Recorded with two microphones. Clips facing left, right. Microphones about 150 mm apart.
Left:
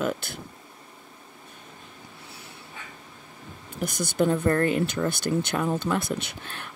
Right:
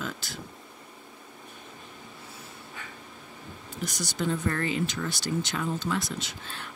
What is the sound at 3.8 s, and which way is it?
Speech, 55° left (ahead or behind).